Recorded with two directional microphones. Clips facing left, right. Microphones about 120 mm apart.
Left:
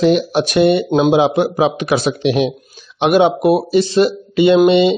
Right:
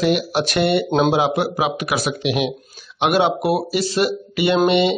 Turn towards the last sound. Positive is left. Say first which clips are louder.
# left 6 dB
turn(degrees=20)  # may be behind; listen again after turning